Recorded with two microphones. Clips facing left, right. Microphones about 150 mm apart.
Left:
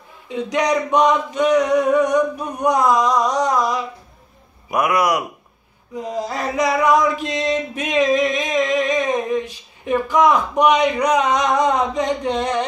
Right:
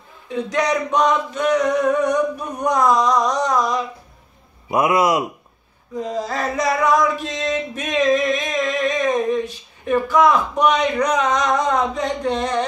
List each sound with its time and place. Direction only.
0.3 s speech: 15° left (ahead or behind)
2.6 s speech: 15° left (ahead or behind)
4.6 s a man's voice: 25° right (ahead or behind)
5.9 s male singing: 15° left (ahead or behind)
9.8 s speech: 15° left (ahead or behind)